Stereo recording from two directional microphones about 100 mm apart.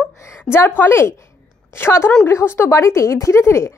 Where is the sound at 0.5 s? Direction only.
20° left (ahead or behind).